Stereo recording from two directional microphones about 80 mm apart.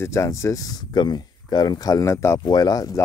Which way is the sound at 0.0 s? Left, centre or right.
Left.